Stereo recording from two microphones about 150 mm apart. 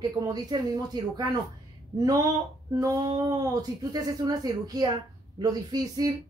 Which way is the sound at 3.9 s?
25° right (ahead or behind).